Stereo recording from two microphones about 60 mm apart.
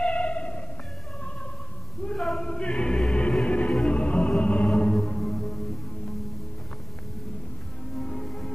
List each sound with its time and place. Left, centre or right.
0.0 s music: centre
2.1 s choir: centre
3.4 s music: left
4.9 s music: centre
8.0 s music: centre